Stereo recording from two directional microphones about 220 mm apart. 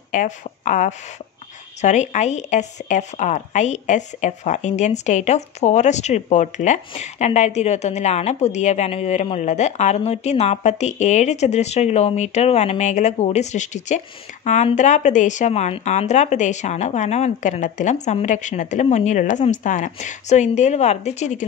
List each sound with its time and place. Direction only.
0.1 s speech: 35° left (ahead or behind)